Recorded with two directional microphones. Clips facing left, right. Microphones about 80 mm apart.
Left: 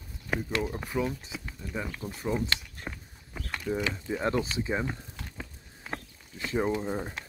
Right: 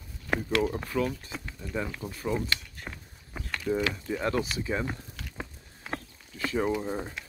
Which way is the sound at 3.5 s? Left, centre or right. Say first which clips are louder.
Right 2 dB; centre.